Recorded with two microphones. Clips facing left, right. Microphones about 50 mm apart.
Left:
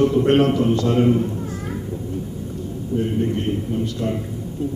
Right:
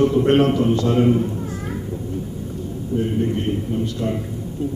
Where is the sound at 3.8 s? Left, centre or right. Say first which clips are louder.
Even; centre.